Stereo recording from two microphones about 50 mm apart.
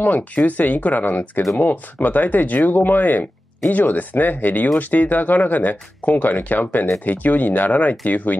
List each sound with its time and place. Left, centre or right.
0.5 s speech: left